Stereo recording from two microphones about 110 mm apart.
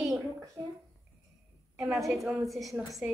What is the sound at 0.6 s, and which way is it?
Speech, 20° right (ahead or behind).